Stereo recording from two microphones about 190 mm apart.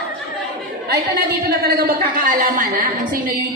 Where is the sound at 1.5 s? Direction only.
55° right (ahead or behind).